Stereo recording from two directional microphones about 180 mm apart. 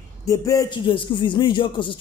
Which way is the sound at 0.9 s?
30° left (ahead or behind).